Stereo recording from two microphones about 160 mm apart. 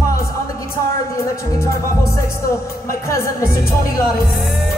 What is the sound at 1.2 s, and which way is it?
Music, 15° left (ahead or behind).